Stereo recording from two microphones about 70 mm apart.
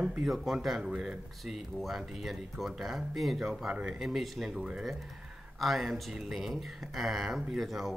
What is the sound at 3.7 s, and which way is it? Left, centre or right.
Speech, centre.